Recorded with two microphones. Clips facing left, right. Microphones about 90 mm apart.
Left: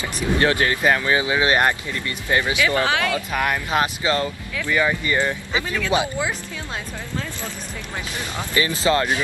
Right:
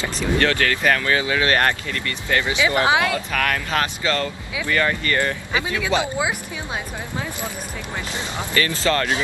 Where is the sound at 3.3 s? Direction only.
20° left (ahead or behind).